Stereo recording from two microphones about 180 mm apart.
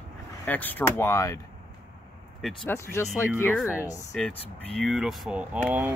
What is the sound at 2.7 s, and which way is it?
Speech, 15° left (ahead or behind).